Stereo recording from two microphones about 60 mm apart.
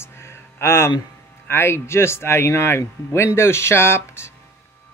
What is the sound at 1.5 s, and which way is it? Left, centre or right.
A man's voice, left.